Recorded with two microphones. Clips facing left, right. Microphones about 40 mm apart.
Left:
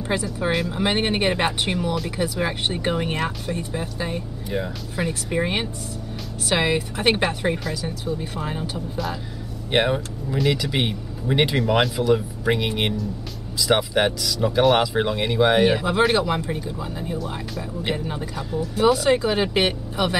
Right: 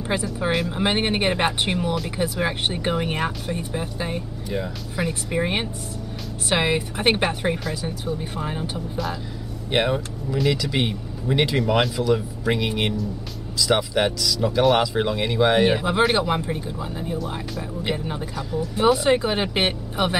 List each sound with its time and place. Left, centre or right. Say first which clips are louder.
0.1 s speech: even; centre
4.5 s speech: left 1 dB; centre
16.8 s speech: even; centre
18.9 s speech: even; centre